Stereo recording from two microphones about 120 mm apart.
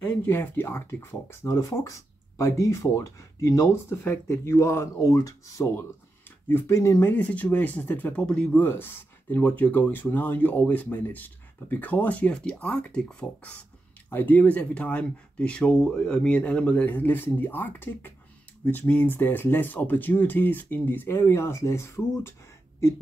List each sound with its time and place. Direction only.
0.0 s speech: 15° left (ahead or behind)